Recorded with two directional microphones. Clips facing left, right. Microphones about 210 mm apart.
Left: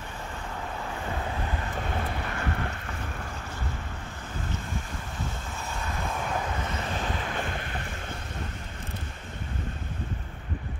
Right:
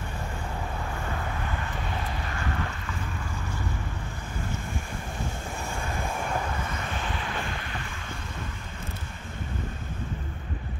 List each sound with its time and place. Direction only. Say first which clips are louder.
2.0 s boat: left 1 dB; 55° left (ahead or behind)
7.0 s waves: left 1 dB; 40° left (ahead or behind)